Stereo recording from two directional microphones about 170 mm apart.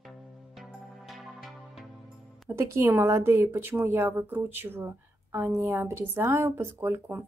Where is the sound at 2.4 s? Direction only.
15° right (ahead or behind).